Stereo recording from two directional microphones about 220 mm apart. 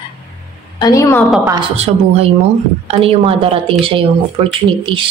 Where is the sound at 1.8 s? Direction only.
30° right (ahead or behind).